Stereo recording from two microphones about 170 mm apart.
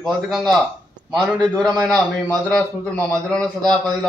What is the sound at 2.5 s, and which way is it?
A man's voice, 5° left (ahead or behind).